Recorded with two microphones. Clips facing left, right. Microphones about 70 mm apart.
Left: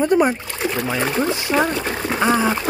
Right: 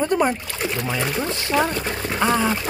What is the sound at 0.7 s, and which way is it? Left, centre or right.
Speech, left.